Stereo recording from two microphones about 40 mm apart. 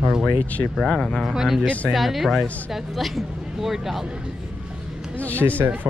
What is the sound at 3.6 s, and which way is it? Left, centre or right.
Speech, centre.